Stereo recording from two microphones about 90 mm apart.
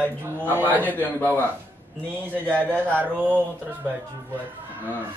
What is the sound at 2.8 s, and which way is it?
Speech, 20° right (ahead or behind).